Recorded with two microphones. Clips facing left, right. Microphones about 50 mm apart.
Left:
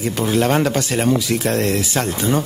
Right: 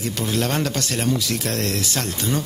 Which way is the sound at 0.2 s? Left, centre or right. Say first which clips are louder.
Left 7 dB; centre.